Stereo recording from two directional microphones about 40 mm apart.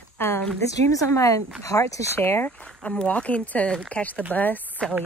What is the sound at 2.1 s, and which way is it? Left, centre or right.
Speech, left.